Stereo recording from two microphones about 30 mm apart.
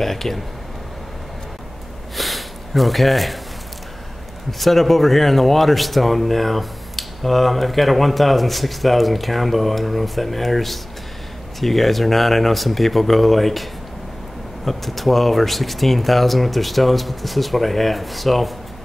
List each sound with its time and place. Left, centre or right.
0.0 s speech: centre
2.1 s a sound: centre
4.5 s a man's voice: centre